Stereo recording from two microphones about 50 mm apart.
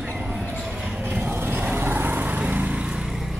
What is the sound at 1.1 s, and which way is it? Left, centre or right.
Vehicle, right.